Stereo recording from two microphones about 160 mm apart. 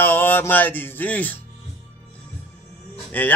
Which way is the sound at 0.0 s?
10° left (ahead or behind).